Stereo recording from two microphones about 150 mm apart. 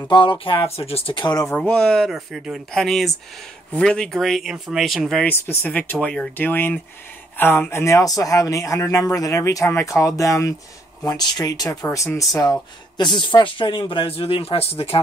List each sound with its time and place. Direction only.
0.1 s speech: 35° left (ahead or behind)
1.5 s speech: 5° left (ahead or behind); by 15.0 s 40° left (ahead or behind)